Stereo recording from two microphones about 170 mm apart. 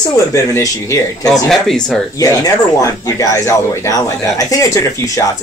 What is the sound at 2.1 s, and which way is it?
Speech, 20° left (ahead or behind).